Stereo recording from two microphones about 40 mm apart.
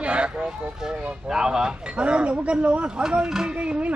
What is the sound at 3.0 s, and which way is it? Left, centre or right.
Speech, centre.